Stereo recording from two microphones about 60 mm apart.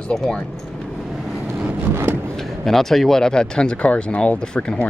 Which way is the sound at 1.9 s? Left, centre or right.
Right.